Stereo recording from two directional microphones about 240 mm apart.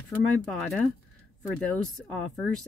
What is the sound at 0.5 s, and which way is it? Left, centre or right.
Speech, centre.